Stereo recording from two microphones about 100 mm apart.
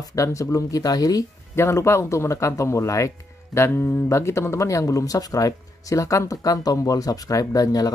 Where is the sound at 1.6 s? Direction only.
25° left (ahead or behind).